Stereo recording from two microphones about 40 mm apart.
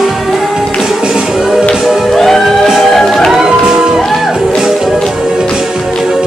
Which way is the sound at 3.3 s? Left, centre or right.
Centre.